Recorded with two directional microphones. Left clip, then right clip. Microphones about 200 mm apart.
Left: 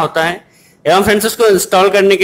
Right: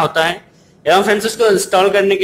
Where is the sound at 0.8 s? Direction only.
15° left (ahead or behind).